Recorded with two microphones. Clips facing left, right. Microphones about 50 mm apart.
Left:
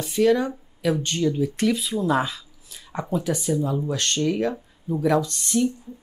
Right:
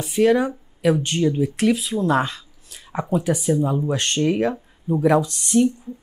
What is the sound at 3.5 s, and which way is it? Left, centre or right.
Speech, right.